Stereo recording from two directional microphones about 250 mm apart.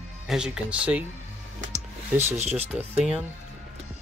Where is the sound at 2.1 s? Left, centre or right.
Centre.